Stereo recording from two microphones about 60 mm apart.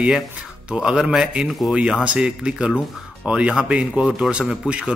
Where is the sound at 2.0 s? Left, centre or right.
Centre.